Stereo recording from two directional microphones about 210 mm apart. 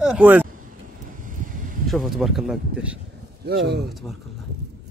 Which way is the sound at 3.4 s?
50° right (ahead or behind).